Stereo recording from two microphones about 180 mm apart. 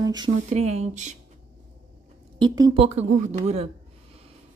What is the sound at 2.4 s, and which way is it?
Speech, 20° right (ahead or behind).